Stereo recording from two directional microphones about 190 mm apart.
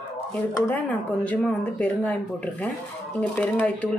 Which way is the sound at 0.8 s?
5° left (ahead or behind).